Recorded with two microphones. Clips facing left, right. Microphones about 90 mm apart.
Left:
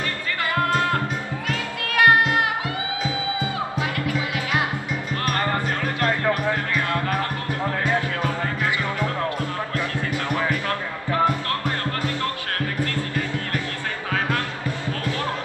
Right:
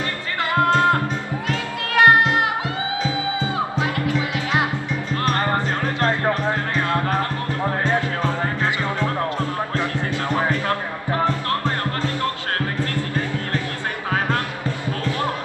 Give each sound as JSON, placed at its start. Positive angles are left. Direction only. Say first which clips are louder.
{"t": 0.6, "sound": "music", "louder": "right 5 dB", "side_deg": -25}
{"t": 9.8, "sound": "music", "louder": "right 1 dB", "side_deg": -20}